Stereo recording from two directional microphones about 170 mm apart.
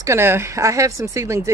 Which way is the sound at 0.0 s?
15° right (ahead or behind).